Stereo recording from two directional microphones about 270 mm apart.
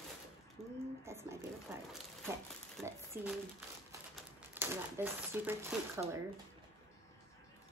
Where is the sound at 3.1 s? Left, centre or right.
Right.